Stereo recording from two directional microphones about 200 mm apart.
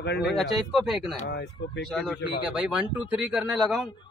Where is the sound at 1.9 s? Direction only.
Centre (ahead or behind).